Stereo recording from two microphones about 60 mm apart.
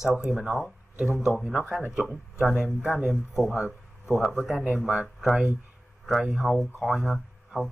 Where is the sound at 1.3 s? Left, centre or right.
Centre.